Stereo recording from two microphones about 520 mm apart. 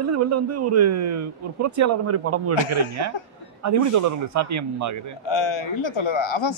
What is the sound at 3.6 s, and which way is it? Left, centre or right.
Speech, right.